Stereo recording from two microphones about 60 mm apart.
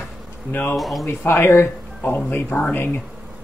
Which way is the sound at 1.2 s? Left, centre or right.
Left.